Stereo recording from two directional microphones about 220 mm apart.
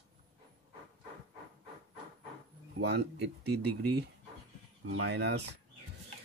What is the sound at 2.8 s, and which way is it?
Speech, 50° right (ahead or behind).